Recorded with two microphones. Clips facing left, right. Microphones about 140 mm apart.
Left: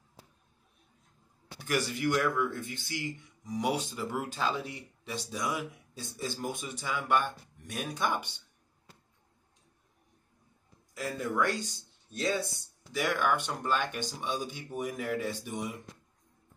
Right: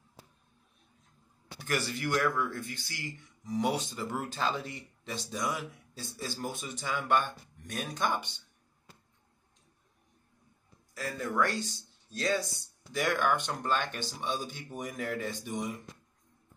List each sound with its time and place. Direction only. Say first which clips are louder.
1.7 s speech: left 2 dB; 15° left (ahead or behind)
5.9 s speech: left 2 dB; 20° left (ahead or behind)
11.0 s speech: even; 15° left (ahead or behind)
12.9 s speech: even; 5° left (ahead or behind)